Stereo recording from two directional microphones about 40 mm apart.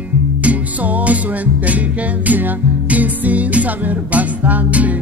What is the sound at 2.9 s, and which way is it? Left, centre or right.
Music, right.